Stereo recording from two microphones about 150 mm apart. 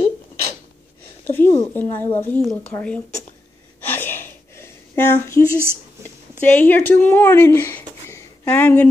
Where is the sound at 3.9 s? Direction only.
15° left (ahead or behind).